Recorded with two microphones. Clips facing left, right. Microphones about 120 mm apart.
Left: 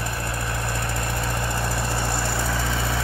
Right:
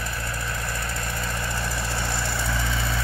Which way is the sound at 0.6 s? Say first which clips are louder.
Left 3 dB; 55° left (ahead or behind).